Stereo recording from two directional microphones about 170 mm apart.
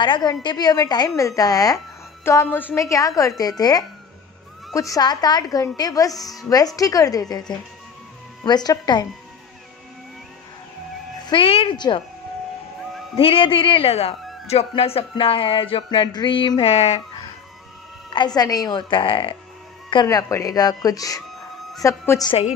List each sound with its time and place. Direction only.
0.0 s a woman's voice: 25° left (ahead or behind)
11.2 s a woman's voice: 30° left (ahead or behind)
13.1 s speech: 35° left (ahead or behind)
18.1 s a woman's voice: 25° left (ahead or behind)